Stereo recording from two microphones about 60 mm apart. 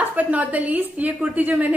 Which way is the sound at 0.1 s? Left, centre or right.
Right.